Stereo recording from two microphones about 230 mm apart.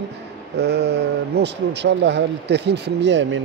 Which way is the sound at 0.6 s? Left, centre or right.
Right.